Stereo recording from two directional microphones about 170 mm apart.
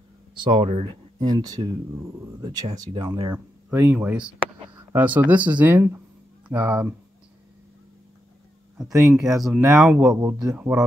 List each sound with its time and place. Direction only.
0.3 s speech: 30° right (ahead or behind)
1.3 s speech: 20° right (ahead or behind)
3.1 s speech: 20° right (ahead or behind)
8.7 s speech: 5° right (ahead or behind)